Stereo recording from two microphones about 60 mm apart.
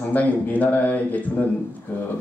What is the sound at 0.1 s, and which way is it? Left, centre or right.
Speech, left.